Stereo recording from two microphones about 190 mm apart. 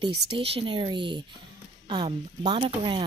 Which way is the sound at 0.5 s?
25° right (ahead or behind).